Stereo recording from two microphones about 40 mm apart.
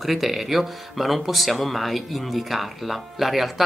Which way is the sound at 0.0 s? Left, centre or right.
Centre.